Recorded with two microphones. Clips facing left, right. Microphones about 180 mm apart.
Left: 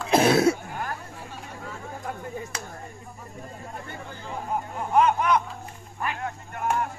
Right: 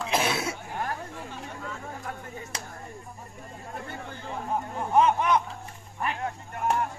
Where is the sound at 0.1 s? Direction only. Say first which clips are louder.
Left 10 dB; 45° left (ahead or behind).